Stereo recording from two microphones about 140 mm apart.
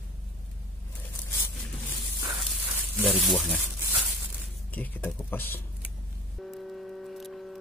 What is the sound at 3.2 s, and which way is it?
Speech, centre (ahead or behind).